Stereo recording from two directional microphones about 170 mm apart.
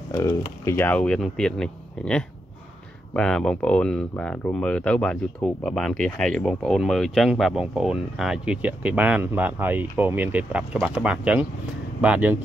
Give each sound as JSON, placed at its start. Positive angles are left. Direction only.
{"t": 0.1, "sound": "speech", "side_deg": 20}